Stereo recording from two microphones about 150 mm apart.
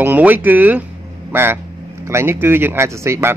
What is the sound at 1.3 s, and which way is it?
Speech, 15° right (ahead or behind).